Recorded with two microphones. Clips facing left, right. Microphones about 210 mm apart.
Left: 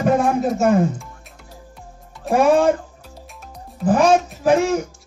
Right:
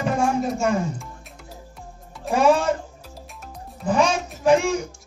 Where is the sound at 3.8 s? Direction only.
55° left (ahead or behind).